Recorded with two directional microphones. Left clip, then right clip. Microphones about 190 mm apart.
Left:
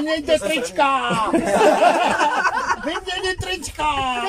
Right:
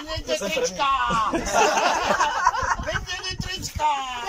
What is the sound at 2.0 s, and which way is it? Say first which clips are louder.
Speech: left 3 dB; 55° left (ahead or behind).